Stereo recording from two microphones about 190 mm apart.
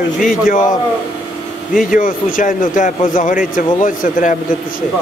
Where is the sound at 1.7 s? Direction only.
45° left (ahead or behind).